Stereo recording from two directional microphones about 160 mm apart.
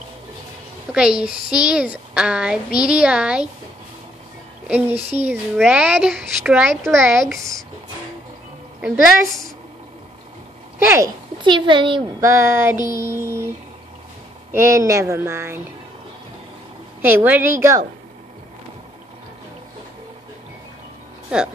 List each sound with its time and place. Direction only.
1.5 s speech: 5° right (ahead or behind)
4.6 s a child's voice: 10° right (ahead or behind)
4.9 s a child's voice: 45° right (ahead or behind)
5.6 s speech: 10° right (ahead or behind)
8.8 s speech: centre (ahead or behind)
11.4 s speech: 30° right (ahead or behind)
12.2 s speech: 15° right (ahead or behind)
14.5 s speech: 15° right (ahead or behind)
17.0 s speech: 10° right (ahead or behind)
21.3 s speech: 5° right (ahead or behind)